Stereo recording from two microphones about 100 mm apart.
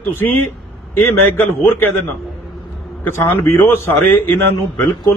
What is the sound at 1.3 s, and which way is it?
Speech, 20° left (ahead or behind).